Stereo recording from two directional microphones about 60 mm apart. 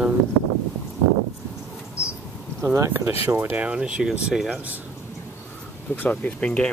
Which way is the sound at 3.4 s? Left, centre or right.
Right.